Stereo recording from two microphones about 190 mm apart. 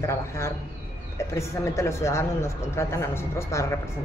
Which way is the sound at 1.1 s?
15° left (ahead or behind).